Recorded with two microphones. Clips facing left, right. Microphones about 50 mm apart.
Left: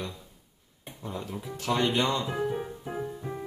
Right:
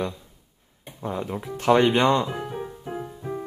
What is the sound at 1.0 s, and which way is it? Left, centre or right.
Speech, right.